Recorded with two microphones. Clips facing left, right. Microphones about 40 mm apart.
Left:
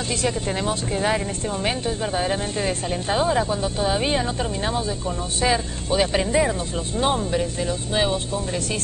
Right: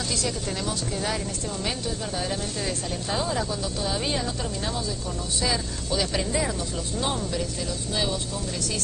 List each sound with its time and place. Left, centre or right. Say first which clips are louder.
0.2 s speech: left 5 dB; left